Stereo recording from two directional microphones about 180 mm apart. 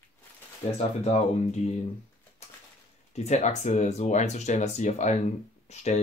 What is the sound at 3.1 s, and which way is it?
Speech, 40° left (ahead or behind).